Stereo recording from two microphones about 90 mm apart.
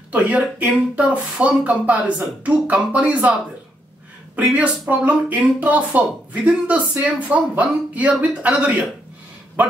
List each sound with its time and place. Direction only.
0.1 s speech: 15° right (ahead or behind)
4.4 s speech: 15° right (ahead or behind)